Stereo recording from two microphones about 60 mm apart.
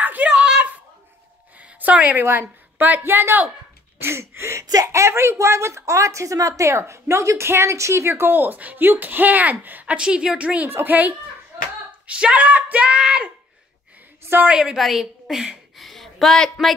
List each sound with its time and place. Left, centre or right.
0.0 s a sound: right
2.2 s a woman's voice: right
9.9 s speech: centre
10.7 s speech: right; by 13.3 s centre
14.4 s a woman's voice: centre
14.8 s a woman's voice: centre